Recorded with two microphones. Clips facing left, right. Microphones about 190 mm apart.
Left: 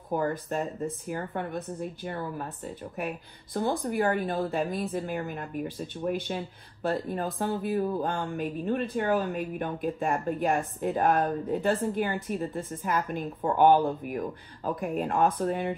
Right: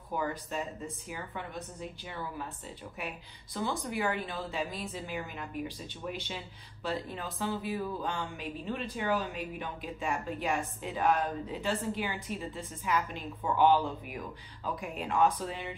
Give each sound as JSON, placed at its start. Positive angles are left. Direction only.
{"t": 0.1, "sound": "a woman's voice", "side_deg": 50}